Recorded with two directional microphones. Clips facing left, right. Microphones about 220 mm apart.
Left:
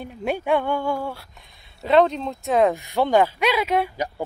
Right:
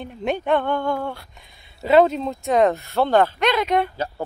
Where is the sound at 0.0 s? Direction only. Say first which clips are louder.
Right 1 dB; 10° left (ahead or behind).